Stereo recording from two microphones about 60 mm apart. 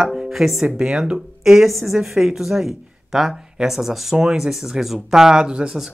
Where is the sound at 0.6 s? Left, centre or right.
Centre.